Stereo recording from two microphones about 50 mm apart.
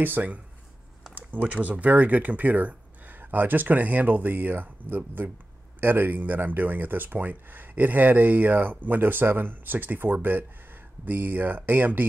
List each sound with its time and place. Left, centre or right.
0.0 s speech: right